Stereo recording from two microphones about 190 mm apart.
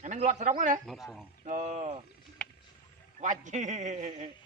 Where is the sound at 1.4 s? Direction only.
40° right (ahead or behind).